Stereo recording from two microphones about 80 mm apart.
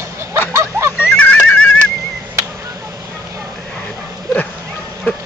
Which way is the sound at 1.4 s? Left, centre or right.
Centre.